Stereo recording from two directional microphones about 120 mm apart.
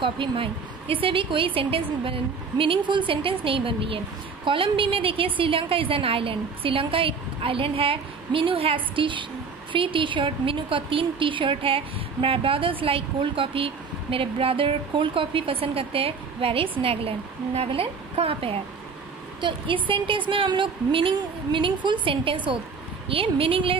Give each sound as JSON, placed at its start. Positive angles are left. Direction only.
{"t": 0.0, "sound": "a woman's voice", "side_deg": -45}